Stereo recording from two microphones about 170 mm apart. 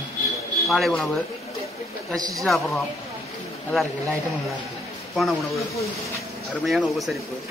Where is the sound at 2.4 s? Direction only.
Centre (ahead or behind).